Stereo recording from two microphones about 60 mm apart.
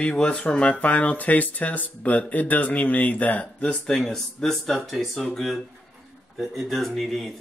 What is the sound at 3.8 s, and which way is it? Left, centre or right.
A man's voice, centre.